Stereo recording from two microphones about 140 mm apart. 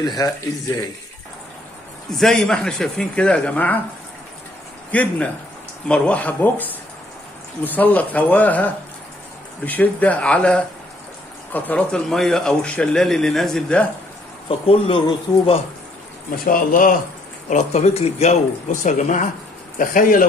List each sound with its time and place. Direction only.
0.2 s speech: 25° left (ahead or behind)
2.1 s speech: 5° left (ahead or behind)
4.9 s a man's voice: 10° left (ahead or behind)
14.5 s speech: 40° left (ahead or behind)
16.3 s speech: 85° left
17.5 s speech: 55° left (ahead or behind)
19.8 s speech: 80° left